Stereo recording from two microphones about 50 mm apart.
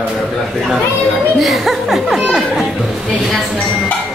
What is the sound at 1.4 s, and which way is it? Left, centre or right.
A child's voice, centre.